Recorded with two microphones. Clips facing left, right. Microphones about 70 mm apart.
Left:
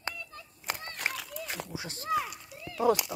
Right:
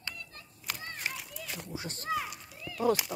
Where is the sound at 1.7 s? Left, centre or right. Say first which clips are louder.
Even; centre.